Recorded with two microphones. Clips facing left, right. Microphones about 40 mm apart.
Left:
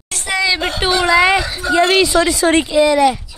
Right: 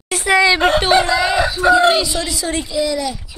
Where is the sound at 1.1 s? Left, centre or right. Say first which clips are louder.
Left 4 dB; left.